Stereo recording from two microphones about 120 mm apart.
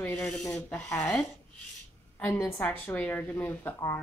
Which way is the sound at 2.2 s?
10° left (ahead or behind).